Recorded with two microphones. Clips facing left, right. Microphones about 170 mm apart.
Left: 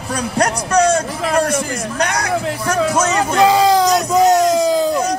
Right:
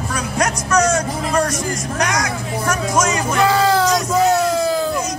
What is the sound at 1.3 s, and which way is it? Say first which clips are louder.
Music: left 4 dB; 55° left (ahead or behind).